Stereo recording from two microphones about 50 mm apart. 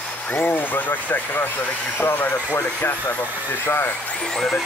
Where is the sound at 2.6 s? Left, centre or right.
Left.